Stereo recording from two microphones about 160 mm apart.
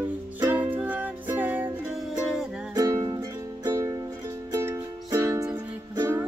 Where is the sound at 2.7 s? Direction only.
20° right (ahead or behind).